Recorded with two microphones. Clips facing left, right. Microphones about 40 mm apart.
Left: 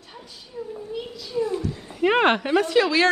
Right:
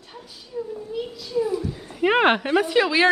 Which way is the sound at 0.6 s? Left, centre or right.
Centre.